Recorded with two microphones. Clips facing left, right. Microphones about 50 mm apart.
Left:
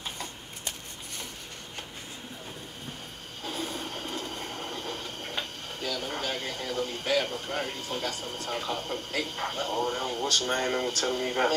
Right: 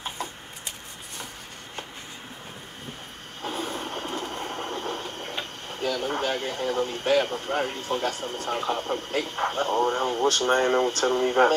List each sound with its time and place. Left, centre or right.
3.4 s train: right
4.3 s printer: right
5.7 s speech: right